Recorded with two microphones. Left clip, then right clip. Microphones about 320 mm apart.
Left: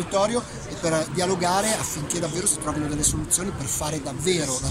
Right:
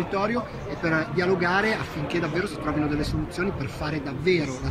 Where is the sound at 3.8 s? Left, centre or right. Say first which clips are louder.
Left 1 dB; centre.